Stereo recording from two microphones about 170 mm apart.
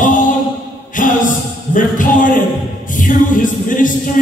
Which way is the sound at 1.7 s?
50° left (ahead or behind).